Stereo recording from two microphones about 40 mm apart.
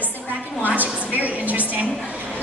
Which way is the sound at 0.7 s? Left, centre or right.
Right.